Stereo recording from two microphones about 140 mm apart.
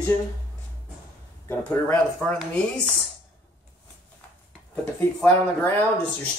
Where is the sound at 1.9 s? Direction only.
10° left (ahead or behind).